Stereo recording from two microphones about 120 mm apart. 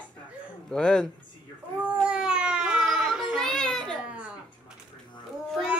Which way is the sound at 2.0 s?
5° right (ahead or behind).